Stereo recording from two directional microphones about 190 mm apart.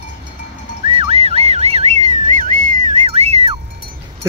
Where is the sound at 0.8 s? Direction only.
30° right (ahead or behind).